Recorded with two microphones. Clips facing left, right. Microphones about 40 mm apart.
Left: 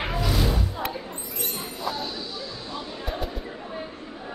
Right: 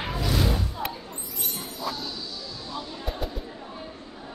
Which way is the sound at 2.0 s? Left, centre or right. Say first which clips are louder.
Left 3 dB; left.